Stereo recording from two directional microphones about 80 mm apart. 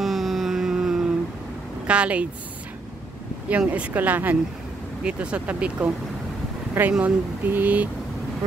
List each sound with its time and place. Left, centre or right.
0.0 s a sound: centre
1.9 s speech: centre
3.4 s speech: centre
6.9 s speech: centre
7.4 s speech: right